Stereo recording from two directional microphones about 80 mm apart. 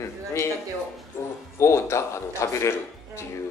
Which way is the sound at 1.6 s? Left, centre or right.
Left.